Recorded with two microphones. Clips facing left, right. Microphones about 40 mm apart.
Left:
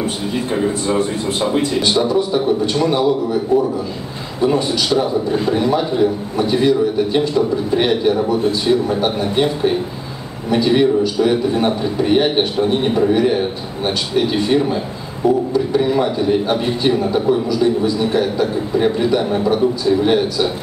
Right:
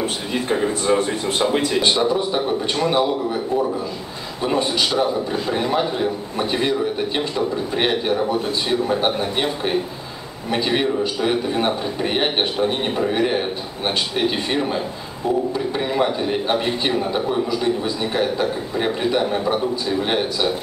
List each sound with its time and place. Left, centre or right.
0.5 s a man's voice: right
1.8 s a man's voice: centre